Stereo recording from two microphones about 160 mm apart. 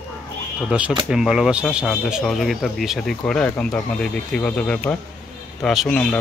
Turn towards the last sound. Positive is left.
turn(degrees=5)  # may be behind; listen again after turning